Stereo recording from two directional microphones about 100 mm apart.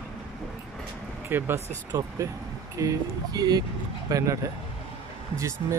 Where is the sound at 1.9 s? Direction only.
35° right (ahead or behind).